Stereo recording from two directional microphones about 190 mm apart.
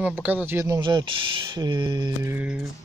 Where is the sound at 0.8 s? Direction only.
25° right (ahead or behind).